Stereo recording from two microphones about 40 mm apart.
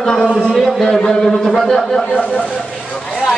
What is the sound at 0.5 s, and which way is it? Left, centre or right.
Speech, centre.